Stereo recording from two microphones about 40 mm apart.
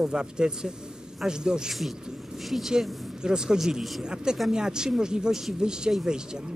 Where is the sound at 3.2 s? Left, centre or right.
Centre.